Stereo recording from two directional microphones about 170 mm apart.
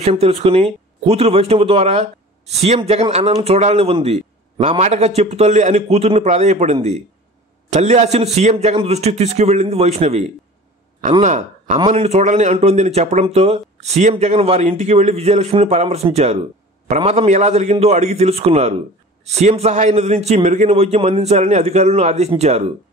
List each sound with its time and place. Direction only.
0.0 s speech: 40° right (ahead or behind)